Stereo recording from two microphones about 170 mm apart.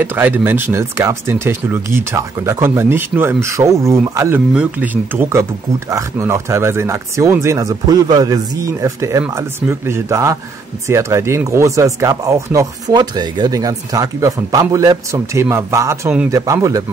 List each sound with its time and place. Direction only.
0.0 s speech: 10° right (ahead or behind)